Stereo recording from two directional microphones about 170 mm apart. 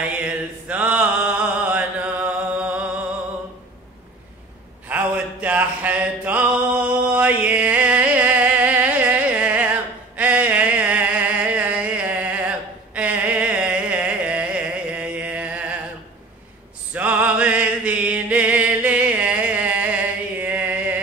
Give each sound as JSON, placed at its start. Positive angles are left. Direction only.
{"t": 0.7, "sound": "mantra", "side_deg": -10}
{"t": 4.8, "sound": "music", "side_deg": -10}
{"t": 16.9, "sound": "music", "side_deg": -10}